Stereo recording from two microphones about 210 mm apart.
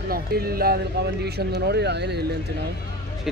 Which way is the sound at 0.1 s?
45° right (ahead or behind).